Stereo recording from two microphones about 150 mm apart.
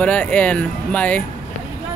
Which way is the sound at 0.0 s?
10° left (ahead or behind).